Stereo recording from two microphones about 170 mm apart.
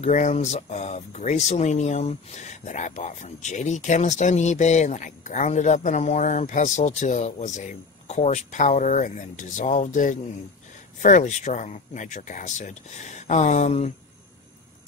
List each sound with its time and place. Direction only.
0.0 s speech: 45° left (ahead or behind)